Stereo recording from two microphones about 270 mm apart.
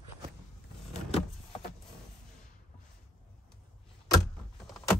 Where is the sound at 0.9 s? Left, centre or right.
Left.